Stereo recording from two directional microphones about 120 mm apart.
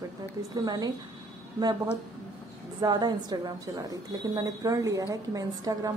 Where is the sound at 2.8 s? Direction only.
35° right (ahead or behind).